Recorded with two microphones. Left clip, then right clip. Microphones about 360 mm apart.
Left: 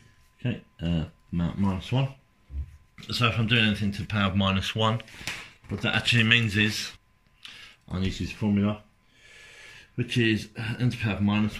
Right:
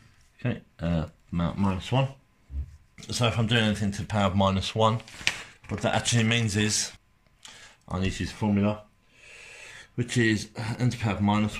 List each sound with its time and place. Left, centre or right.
0.7 s speech: right
5.3 s speech: right
7.4 s a sound: centre
8.1 s speech: right
9.9 s speech: centre